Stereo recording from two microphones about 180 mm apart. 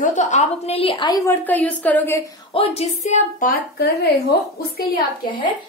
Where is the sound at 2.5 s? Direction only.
35° left (ahead or behind); by 4.8 s 65° left (ahead or behind).